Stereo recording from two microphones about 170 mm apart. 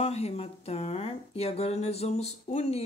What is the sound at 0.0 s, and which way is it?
Speech, 35° left (ahead or behind).